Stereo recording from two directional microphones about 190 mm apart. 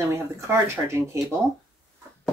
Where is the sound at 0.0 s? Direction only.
15° right (ahead or behind).